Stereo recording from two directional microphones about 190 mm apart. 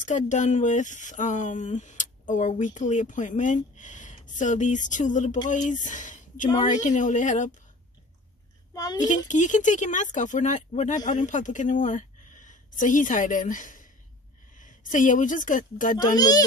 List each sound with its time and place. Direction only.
0.0 s speech: 40° left (ahead or behind)
8.7 s a child's voice: 20° left (ahead or behind)
9.3 s a woman's voice: 40° left (ahead or behind)
16.2 s a child's voice: 20° left (ahead or behind)